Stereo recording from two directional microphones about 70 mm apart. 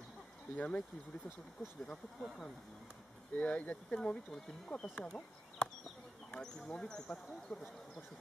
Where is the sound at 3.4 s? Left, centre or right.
Centre.